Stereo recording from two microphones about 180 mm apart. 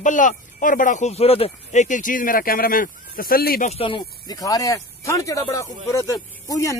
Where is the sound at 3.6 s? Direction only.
30° left (ahead or behind).